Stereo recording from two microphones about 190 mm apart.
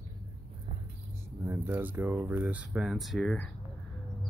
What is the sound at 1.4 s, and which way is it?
Speech, 10° right (ahead or behind).